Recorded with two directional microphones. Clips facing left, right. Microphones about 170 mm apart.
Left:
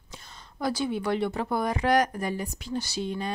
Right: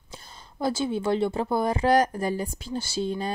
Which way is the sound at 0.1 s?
30° right (ahead or behind).